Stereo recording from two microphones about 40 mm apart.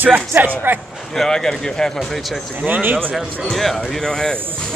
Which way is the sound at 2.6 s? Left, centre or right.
Right.